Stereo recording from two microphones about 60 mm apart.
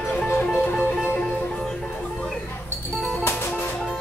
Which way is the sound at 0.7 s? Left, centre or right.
Left.